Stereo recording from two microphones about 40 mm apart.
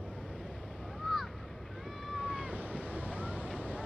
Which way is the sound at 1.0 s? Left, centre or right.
Centre.